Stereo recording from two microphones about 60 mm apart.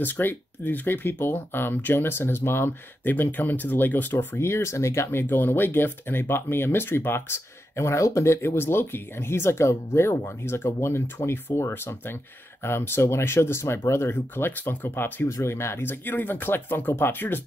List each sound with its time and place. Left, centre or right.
0.0 s speech: left
4.4 s speech: left
5.2 s speech: left
15.2 s speech: left